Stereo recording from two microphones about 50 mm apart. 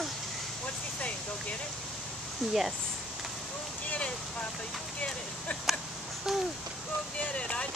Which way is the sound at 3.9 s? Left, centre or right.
Left.